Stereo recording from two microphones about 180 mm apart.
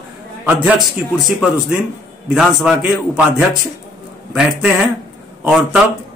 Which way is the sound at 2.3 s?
5° right (ahead or behind).